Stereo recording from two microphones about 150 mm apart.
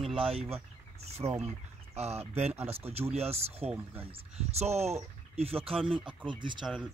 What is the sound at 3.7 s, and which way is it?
Speech, 15° right (ahead or behind).